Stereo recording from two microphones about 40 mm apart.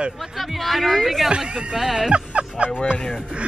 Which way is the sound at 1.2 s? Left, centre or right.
Centre.